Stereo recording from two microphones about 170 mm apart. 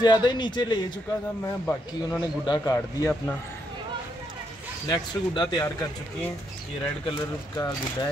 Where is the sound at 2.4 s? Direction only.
25° left (ahead or behind).